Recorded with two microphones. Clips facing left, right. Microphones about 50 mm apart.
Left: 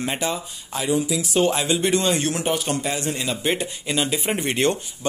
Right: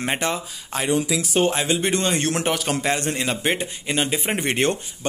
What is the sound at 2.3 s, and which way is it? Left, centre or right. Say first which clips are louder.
Speech: right 1 dB; right.